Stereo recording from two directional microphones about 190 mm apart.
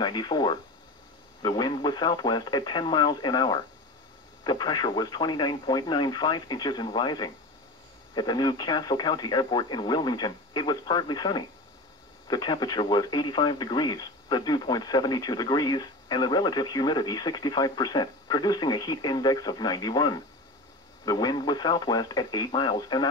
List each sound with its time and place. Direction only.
0.0 s speech: 25° left (ahead or behind)